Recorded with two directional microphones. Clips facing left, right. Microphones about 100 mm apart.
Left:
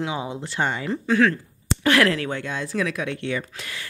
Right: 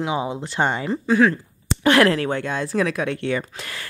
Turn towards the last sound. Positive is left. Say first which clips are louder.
# right 3 dB
turn(degrees=-45)  # may be behind; listen again after turning